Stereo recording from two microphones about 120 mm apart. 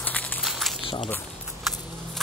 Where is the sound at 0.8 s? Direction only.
50° left (ahead or behind).